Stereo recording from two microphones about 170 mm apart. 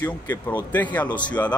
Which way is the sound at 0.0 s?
10° left (ahead or behind).